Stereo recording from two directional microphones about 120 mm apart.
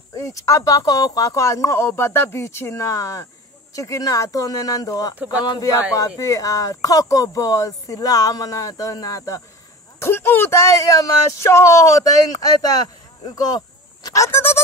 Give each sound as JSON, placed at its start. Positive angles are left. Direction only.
{"t": 0.1, "sound": "speech", "side_deg": 25}